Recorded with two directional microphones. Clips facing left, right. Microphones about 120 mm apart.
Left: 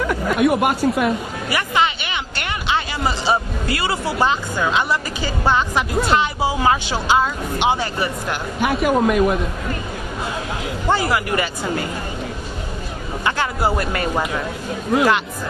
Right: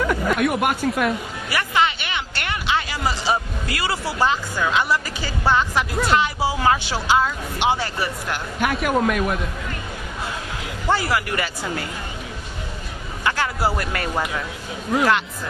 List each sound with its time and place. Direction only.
0.4 s speech: centre (ahead or behind)
1.5 s speech: 20° left (ahead or behind)
8.5 s speech: centre (ahead or behind)
10.9 s speech: 20° left (ahead or behind)
13.2 s speech: 20° left (ahead or behind)